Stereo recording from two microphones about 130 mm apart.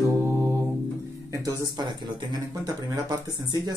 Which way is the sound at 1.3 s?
25° right (ahead or behind).